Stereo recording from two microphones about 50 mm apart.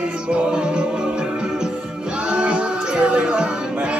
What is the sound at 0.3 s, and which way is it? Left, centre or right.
Music, centre.